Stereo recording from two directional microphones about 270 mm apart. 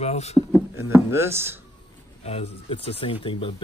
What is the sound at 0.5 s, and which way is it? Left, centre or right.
Speech, centre.